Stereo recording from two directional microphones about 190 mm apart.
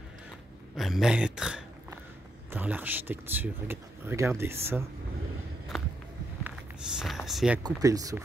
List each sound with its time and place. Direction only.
0.7 s speech: centre (ahead or behind)
6.4 s a sound: 5° right (ahead or behind)
7.6 s speech: 20° right (ahead or behind)